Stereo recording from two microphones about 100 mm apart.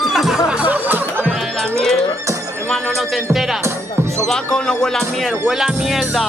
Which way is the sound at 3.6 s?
25° right (ahead or behind).